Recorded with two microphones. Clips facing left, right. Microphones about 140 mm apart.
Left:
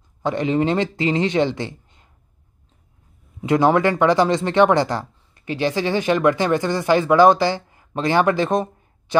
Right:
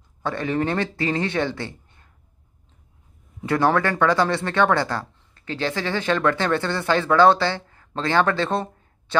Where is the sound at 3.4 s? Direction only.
20° left (ahead or behind).